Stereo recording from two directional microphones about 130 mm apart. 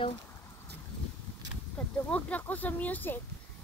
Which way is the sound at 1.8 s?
5° left (ahead or behind).